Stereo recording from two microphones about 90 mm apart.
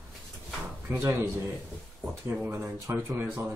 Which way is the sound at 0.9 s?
30° right (ahead or behind).